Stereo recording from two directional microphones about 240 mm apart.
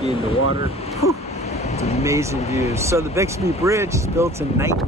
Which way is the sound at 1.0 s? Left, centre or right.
Left.